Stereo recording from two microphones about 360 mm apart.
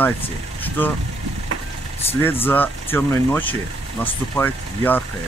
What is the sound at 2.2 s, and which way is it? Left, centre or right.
Speech, centre.